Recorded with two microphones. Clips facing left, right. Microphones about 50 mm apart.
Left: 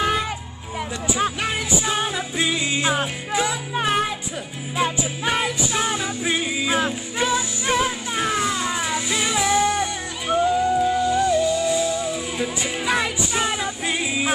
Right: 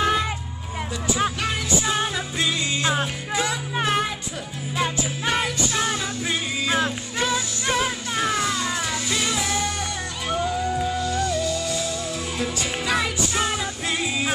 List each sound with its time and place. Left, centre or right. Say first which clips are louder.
0.0 s music: even; centre
1.4 s music: left 1 dB; centre